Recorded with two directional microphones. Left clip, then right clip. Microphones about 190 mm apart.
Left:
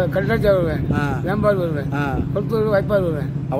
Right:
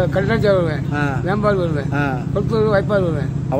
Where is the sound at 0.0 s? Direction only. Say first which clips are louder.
Right 1 dB; 10° left (ahead or behind).